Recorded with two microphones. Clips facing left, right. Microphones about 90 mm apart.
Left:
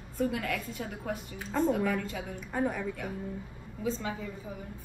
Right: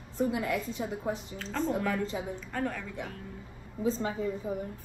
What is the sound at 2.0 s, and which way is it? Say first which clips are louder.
Speech: right 3 dB; 25° right (ahead or behind).